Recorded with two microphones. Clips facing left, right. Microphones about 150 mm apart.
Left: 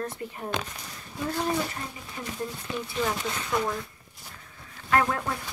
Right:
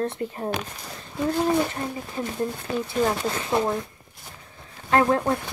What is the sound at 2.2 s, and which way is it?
Speech, 30° right (ahead or behind).